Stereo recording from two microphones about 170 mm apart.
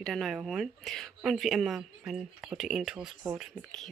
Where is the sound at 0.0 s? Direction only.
Centre (ahead or behind).